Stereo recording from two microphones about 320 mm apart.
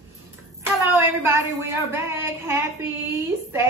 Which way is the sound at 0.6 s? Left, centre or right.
Centre.